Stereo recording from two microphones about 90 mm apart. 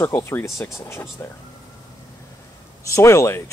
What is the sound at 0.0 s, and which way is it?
Speech, 30° left (ahead or behind).